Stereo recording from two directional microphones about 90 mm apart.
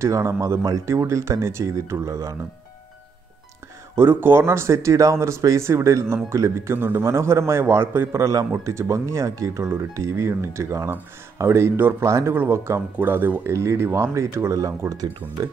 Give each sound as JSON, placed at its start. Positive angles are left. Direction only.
{"t": 0.0, "sound": "speech", "side_deg": -30}
{"t": 3.9, "sound": "speech", "side_deg": -25}
{"t": 8.2, "sound": "speech", "side_deg": -40}